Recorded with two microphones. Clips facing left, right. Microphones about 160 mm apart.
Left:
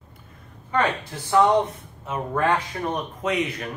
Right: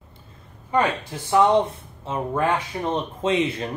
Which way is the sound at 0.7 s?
10° right (ahead or behind).